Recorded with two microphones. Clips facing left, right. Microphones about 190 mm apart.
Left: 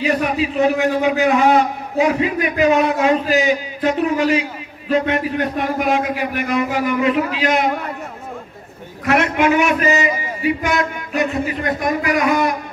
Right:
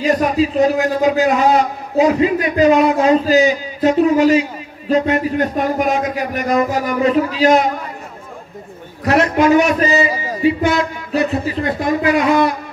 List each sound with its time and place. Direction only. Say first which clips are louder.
0.0 s a man's voice: right 3 dB; 40° right (ahead or behind)
9.0 s a man's voice: right 3 dB; 35° right (ahead or behind)